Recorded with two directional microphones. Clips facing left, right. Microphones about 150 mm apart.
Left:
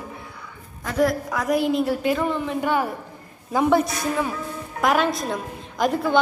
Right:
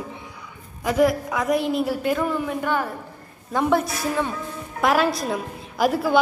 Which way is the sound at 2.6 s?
10° left (ahead or behind).